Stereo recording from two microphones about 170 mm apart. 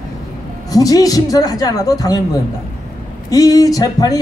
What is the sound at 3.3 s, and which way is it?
Speech, 20° left (ahead or behind).